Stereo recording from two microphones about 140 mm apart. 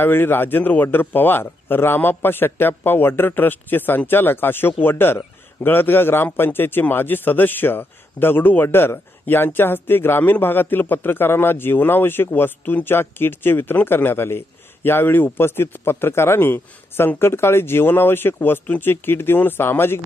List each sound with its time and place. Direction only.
0.0 s a man's voice: 15° left (ahead or behind)